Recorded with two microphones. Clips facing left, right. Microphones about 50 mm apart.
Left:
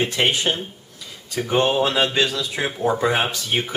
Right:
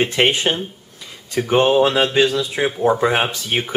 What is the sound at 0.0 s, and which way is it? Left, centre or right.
Speech, right.